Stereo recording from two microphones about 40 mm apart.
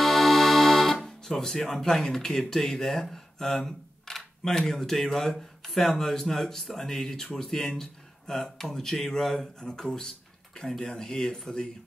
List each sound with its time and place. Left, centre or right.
0.0 s music: centre
1.0 s speech: centre